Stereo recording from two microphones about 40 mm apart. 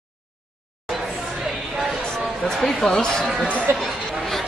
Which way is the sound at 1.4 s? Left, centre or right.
Centre.